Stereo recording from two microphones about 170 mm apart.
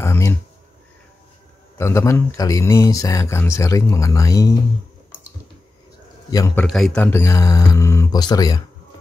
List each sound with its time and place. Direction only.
0.0 s a sound: 15° left (ahead or behind)
1.8 s speech: 15° left (ahead or behind)
6.3 s speech: 20° left (ahead or behind)
6.6 s speech: 5° left (ahead or behind); by 8.6 s 25° left (ahead or behind)